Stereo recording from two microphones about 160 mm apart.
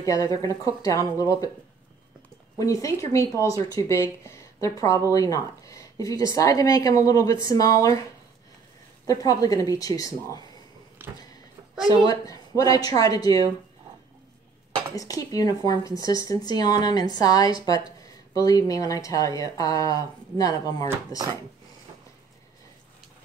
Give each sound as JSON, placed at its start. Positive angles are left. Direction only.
{"t": 0.0, "sound": "speech", "side_deg": 20}
{"t": 2.6, "sound": "speech", "side_deg": 20}
{"t": 9.0, "sound": "speech", "side_deg": 20}
{"t": 11.0, "sound": "power windows", "side_deg": -15}
{"t": 12.0, "sound": "speech", "side_deg": 20}
{"t": 15.0, "sound": "speech", "side_deg": 20}